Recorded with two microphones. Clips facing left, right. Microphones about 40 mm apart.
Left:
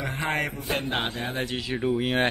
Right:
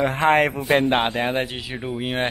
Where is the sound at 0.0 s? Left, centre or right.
Right.